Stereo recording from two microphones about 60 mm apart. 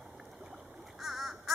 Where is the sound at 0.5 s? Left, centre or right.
Centre.